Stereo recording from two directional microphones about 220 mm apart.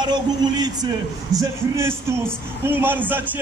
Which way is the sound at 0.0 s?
20° right (ahead or behind).